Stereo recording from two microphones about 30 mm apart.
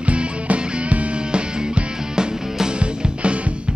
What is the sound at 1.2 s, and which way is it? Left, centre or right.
Music, right.